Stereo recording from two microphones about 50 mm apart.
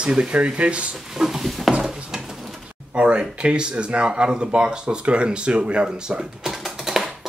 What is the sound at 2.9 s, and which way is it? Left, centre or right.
Speech, right.